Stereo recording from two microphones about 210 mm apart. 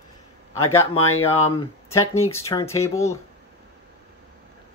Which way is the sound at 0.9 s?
90° left.